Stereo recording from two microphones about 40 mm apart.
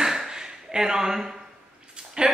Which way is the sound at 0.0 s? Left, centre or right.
Centre.